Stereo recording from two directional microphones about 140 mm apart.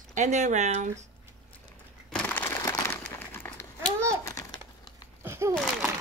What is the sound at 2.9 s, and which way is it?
Crumpling, 15° left (ahead or behind).